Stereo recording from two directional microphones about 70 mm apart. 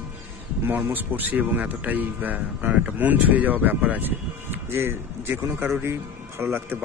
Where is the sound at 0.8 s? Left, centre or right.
Right.